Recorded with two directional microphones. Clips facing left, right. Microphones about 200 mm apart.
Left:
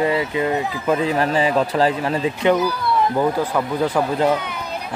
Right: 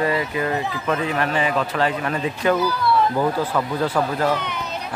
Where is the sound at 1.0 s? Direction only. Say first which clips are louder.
Left 3 dB; 35° left (ahead or behind); by 4.6 s 10° left (ahead or behind).